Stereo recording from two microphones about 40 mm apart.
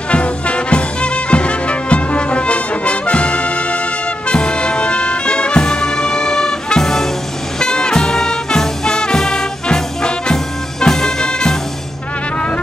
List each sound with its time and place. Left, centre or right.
0.1 s music: left; by 11.5 s centre